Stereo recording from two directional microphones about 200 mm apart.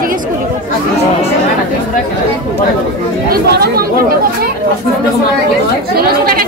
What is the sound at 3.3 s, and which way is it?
Speech, 50° right (ahead or behind).